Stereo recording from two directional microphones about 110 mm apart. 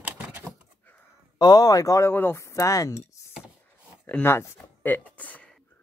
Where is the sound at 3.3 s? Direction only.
5° right (ahead or behind).